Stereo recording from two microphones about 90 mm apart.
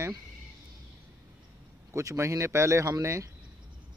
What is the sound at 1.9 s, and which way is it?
Speech, 30° right (ahead or behind).